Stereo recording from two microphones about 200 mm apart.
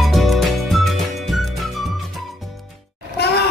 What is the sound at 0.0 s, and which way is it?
Music, centre (ahead or behind).